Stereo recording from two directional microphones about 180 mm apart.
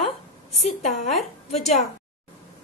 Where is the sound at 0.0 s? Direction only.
35° left (ahead or behind).